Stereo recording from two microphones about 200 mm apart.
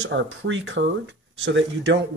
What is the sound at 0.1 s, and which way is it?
Speech, 70° right (ahead or behind).